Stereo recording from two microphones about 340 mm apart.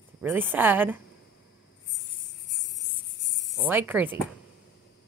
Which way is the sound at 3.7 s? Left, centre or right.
Centre.